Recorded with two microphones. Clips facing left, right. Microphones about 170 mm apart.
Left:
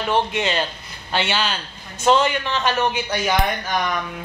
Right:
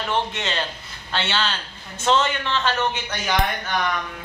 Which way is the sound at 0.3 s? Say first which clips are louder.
Left 5 dB; 15° left (ahead or behind).